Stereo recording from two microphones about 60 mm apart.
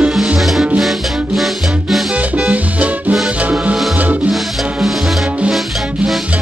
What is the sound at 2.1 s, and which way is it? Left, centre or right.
Music, right.